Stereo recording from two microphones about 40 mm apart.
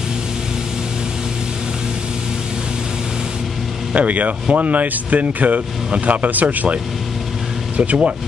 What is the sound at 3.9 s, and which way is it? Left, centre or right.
Speech, right.